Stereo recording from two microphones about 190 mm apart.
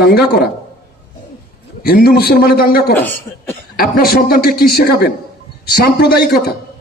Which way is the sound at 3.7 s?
50° left (ahead or behind).